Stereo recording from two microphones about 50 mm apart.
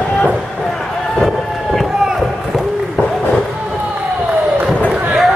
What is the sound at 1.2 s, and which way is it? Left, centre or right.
Run, centre.